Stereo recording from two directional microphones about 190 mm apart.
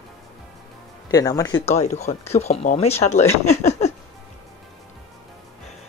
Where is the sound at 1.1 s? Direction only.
20° left (ahead or behind).